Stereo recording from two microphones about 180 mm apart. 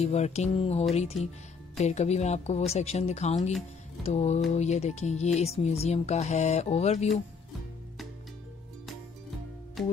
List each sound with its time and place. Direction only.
0.0 s speech: 35° left (ahead or behind)
9.8 s music: centre (ahead or behind)